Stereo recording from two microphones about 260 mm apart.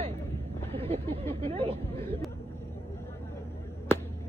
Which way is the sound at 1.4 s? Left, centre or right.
Right.